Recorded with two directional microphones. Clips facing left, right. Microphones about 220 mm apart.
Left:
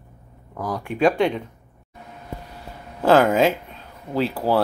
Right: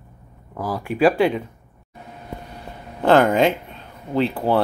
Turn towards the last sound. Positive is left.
turn(degrees=5)  # may be behind; listen again after turning